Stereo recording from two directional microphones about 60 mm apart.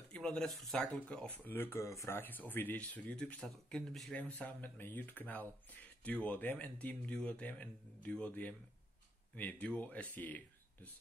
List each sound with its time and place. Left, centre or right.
0.1 s speech: centre
0.5 s speech: centre
0.7 s speech: left
1.4 s speech: left
2.1 s speech: left
3.0 s speech: centre
4.1 s speech: left